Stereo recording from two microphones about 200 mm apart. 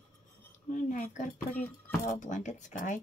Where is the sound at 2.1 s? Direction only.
35° left (ahead or behind).